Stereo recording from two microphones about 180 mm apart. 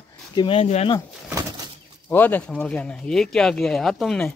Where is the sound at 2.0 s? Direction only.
10° left (ahead or behind).